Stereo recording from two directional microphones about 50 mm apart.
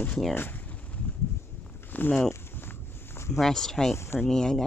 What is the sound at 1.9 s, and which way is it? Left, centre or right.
Speech, left.